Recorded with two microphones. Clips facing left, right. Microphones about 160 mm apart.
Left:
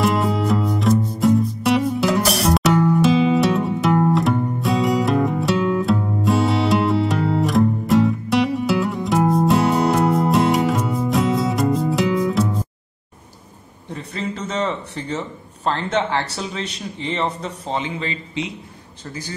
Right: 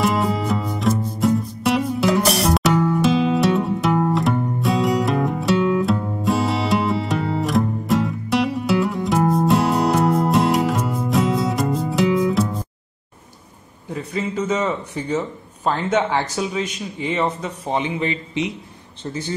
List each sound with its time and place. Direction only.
0.0 s music: centre (ahead or behind)
13.8 s a sound: 10° right (ahead or behind)
17.0 s speech: 10° right (ahead or behind)